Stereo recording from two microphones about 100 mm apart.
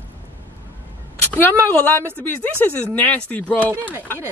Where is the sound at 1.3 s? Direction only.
20° left (ahead or behind).